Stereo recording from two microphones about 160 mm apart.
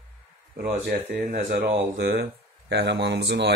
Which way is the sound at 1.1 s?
90° right.